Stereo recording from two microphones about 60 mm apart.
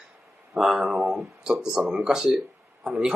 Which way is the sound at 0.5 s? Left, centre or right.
Centre.